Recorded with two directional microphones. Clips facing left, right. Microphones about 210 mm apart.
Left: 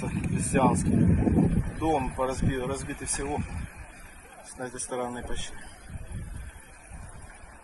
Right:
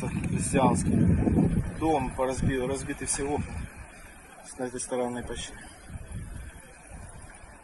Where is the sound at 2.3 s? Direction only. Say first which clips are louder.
Right 1 dB; 15° right (ahead or behind).